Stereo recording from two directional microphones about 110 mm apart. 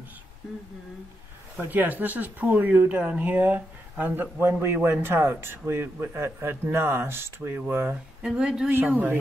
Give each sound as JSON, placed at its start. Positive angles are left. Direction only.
{"t": 1.6, "sound": "a man's voice", "side_deg": -15}